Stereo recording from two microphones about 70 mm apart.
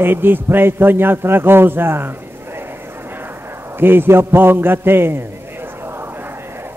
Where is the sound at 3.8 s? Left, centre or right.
Right.